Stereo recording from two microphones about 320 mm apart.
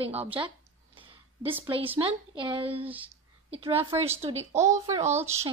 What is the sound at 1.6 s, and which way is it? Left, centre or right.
A woman's voice, centre.